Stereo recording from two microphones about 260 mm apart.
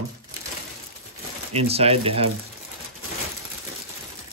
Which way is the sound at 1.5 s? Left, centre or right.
Right.